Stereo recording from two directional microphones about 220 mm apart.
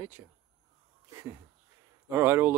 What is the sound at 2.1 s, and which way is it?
Speech, 10° right (ahead or behind).